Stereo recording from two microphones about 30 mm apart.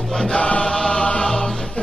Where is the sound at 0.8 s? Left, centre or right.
Left.